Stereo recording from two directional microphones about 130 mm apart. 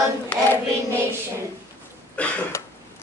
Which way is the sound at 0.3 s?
15° left (ahead or behind).